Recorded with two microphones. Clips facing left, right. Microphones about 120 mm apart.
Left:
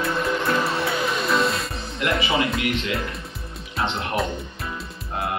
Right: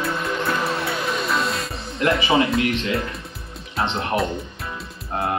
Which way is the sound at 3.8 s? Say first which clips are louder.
Right 1 dB; centre (ahead or behind).